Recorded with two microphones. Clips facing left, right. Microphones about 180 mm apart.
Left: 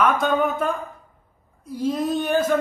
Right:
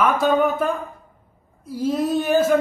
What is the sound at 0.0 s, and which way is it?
Speech, 5° right (ahead or behind).